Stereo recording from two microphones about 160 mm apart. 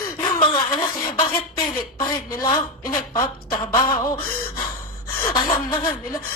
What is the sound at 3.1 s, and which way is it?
Speech, 25° left (ahead or behind).